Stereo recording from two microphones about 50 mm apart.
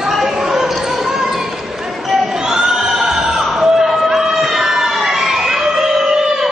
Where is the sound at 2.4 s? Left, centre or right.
Centre.